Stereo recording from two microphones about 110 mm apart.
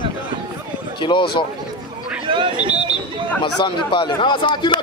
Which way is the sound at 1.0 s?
45° left (ahead or behind).